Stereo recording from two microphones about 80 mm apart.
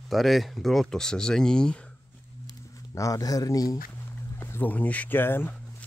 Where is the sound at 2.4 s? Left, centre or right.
Left.